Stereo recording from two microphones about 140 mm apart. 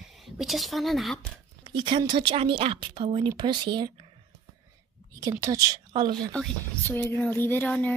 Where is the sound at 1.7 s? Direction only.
35° right (ahead or behind).